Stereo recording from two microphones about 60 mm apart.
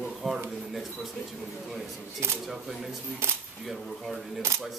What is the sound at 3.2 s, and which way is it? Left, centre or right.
Speech, right.